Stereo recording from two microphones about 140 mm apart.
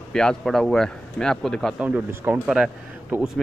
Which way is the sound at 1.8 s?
10° right (ahead or behind).